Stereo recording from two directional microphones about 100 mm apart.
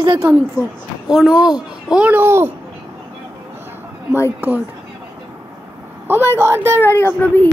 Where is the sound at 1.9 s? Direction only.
15° right (ahead or behind).